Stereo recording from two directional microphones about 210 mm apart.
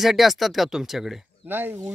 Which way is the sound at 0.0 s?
Centre (ahead or behind).